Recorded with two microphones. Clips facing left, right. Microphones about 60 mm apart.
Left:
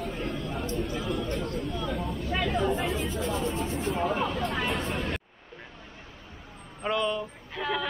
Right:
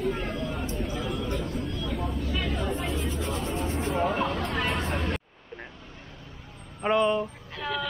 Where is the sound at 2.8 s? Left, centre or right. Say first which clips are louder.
Left 1 dB; centre.